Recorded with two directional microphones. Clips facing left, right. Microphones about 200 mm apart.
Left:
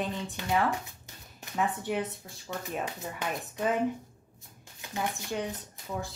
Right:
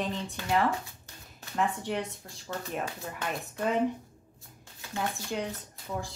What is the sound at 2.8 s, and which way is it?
Speech, 20° left (ahead or behind).